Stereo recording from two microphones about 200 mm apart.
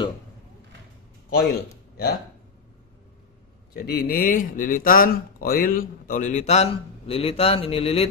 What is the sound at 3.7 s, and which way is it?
Speech, 50° left (ahead or behind).